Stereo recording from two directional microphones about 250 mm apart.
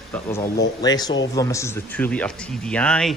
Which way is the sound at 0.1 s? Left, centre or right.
Centre.